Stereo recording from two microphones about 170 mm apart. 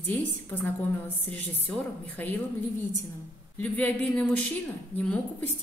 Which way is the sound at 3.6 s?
10° left (ahead or behind).